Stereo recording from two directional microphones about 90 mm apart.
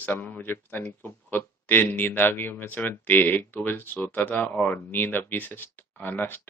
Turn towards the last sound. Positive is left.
turn(degrees=25)  # may be behind; listen again after turning